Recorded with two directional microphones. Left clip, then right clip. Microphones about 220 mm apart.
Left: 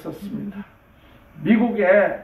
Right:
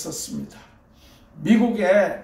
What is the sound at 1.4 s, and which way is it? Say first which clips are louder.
Speech: left 1 dB; 30° right (ahead or behind).